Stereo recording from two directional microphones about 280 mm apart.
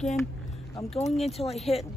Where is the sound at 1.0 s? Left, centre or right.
Centre.